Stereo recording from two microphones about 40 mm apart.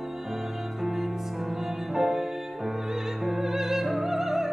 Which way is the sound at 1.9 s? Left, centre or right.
Centre.